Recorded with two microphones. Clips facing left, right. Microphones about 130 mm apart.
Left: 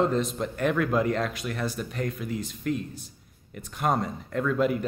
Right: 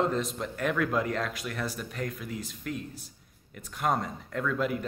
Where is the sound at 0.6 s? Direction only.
5° left (ahead or behind).